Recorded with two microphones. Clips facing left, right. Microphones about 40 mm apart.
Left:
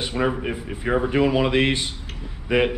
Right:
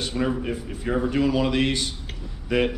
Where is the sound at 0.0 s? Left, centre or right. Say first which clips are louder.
Left 2 dB; left.